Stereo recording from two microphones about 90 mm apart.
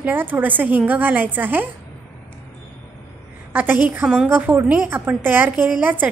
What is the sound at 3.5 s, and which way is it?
Speech, 20° right (ahead or behind).